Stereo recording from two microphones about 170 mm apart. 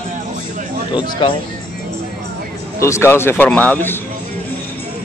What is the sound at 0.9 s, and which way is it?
Speech, 30° left (ahead or behind).